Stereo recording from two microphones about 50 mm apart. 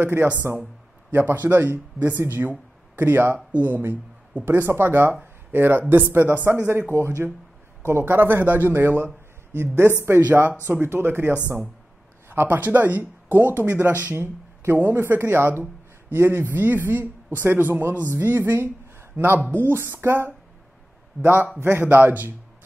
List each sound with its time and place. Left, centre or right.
0.0 s a man's voice: right
4.5 s a woman's voice: right
10.2 s speech: right
16.5 s speech: right
18.0 s speech: right
19.6 s speech: right
21.2 s speech: right